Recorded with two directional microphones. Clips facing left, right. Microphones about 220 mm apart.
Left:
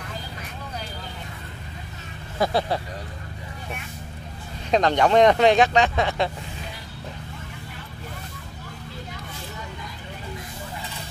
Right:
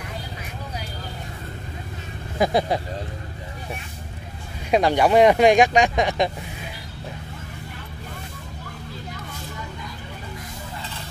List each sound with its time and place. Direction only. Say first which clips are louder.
2.3 s speech: right 2 dB; 15° right (ahead or behind)
4.6 s speech: right 1 dB; 10° right (ahead or behind)